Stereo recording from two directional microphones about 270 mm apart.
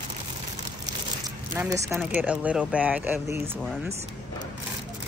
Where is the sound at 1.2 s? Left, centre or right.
Centre.